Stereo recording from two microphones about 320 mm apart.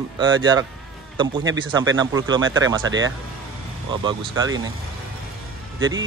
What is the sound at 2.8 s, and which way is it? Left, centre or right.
Speech, right.